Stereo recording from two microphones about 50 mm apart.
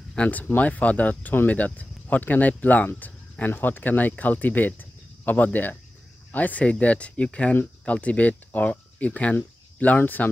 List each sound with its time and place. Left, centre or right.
0.1 s speech: left